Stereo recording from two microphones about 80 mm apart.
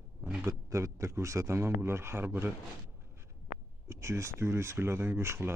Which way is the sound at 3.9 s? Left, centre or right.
Right.